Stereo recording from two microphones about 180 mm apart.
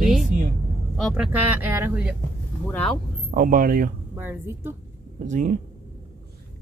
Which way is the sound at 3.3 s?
50° right (ahead or behind).